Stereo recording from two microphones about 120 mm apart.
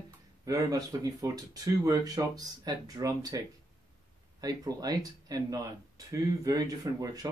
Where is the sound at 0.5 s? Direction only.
30° right (ahead or behind).